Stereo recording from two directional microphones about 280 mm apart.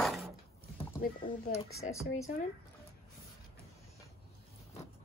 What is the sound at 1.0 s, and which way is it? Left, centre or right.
Speech, left.